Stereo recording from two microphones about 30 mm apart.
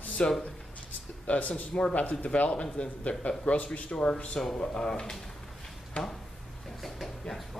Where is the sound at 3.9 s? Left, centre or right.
Left.